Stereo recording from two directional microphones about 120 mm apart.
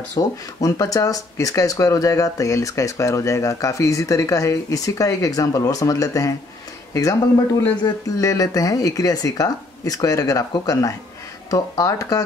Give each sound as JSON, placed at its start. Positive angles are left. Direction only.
{"t": 0.1, "sound": "speech", "side_deg": 30}